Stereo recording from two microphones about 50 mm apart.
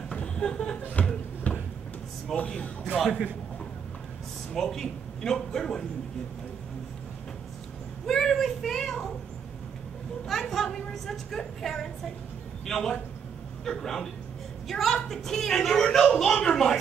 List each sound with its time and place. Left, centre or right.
0.1 s a sound: centre
1.5 s a sound: left
2.3 s speech: left
3.0 s a woman's voice: centre
4.6 s a woman's voice: centre
8.1 s speech: centre
10.2 s a woman's voice: centre